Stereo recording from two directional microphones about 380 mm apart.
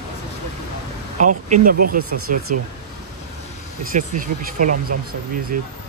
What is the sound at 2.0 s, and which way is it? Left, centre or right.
Speech, right.